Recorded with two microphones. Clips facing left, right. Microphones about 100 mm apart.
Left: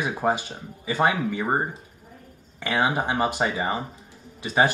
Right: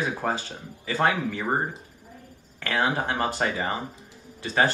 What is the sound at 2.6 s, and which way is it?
Speech, 15° left (ahead or behind).